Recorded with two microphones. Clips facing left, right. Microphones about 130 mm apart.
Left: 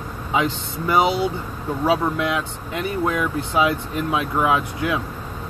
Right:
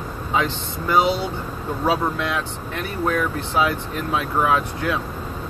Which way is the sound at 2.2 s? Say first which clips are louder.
Left 2 dB; 15° left (ahead or behind).